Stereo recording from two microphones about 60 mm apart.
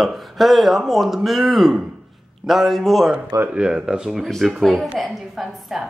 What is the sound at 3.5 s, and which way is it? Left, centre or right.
Speech, centre.